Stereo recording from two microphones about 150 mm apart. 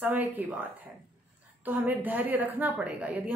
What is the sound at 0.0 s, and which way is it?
A woman's voice, 10° right (ahead or behind).